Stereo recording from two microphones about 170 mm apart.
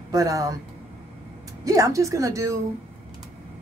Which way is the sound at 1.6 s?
20° right (ahead or behind).